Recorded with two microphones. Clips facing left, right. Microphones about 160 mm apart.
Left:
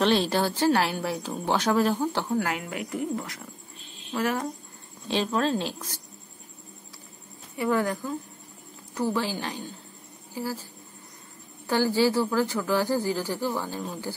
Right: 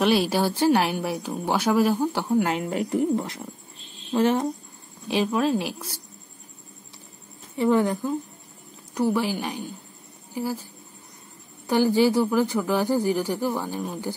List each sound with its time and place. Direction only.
0.0 s speech: 10° right (ahead or behind)
2.4 s a woman's voice: 30° right (ahead or behind)
5.0 s speech: 15° right (ahead or behind)
7.5 s a woman's voice: 25° right (ahead or behind)